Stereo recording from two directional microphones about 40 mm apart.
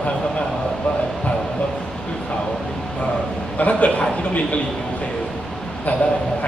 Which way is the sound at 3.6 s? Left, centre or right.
Left.